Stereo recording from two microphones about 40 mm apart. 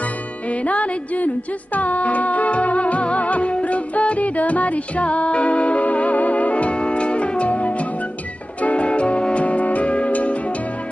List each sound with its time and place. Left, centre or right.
0.5 s music: left